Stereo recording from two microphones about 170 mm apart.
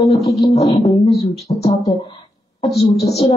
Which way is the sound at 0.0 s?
40° left (ahead or behind).